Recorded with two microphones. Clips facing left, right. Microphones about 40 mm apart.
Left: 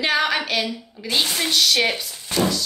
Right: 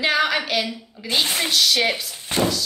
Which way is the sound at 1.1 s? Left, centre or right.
Centre.